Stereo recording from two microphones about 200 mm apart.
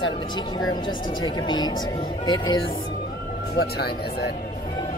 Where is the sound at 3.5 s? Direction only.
50° left (ahead or behind).